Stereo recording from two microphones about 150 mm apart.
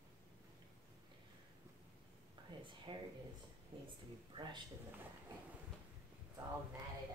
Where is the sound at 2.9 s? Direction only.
30° right (ahead or behind).